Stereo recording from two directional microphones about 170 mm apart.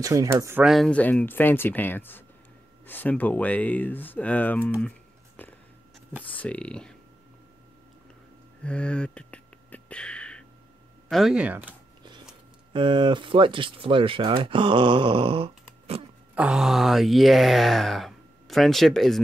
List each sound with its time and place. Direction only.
0.0 s speech: 20° right (ahead or behind)
0.7 s speech: 5° left (ahead or behind)
6.2 s speech: 10° left (ahead or behind)
8.6 s a sound: 5° left (ahead or behind)
11.1 s speech: centre (ahead or behind)
12.0 s printer: 25° right (ahead or behind)
12.7 s speech: 30° right (ahead or behind)
16.3 s speech: 5° right (ahead or behind)